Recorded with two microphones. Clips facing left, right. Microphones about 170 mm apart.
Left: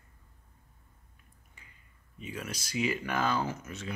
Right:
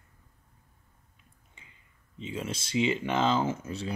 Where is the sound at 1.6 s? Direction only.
25° right (ahead or behind).